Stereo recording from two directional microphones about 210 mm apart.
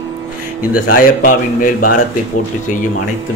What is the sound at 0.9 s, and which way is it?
A man's voice, 40° left (ahead or behind).